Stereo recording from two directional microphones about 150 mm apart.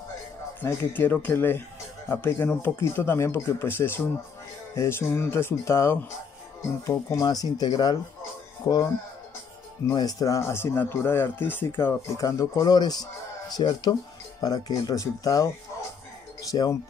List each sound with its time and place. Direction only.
0.6 s speech: 15° left (ahead or behind)
8.2 s music: 25° left (ahead or behind)
9.9 s speech: 25° left (ahead or behind)